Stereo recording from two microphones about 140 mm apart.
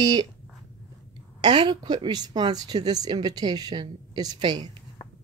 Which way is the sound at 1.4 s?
30° right (ahead or behind).